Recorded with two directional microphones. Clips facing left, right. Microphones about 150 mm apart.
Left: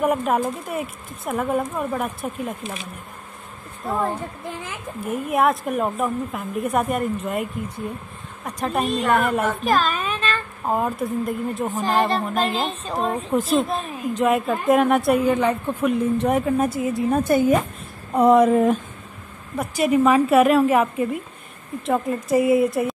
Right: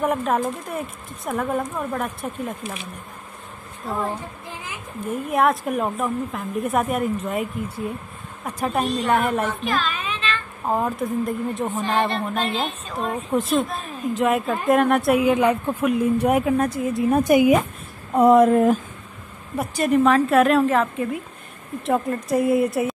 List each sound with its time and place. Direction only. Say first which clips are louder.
0.0 s a woman's voice: left 1 dB; 5° left (ahead or behind)
5.0 s a woman's voice: even; centre (ahead or behind)
8.5 s a woman's voice: even; 5° right (ahead or behind)
9.5 s a sound: left 4 dB; 45° left (ahead or behind)
10.7 s a woman's voice: even; centre (ahead or behind)
12.1 s a woman's voice: left 2 dB; 40° left (ahead or behind)
13.3 s a woman's voice: even; centre (ahead or behind)
16.5 s a woman's voice: even; 5° left (ahead or behind)
17.1 s speech: right 3 dB; 15° right (ahead or behind)
18.1 s a woman's voice: right 1 dB; centre (ahead or behind)
21.8 s a woman's voice: even; centre (ahead or behind)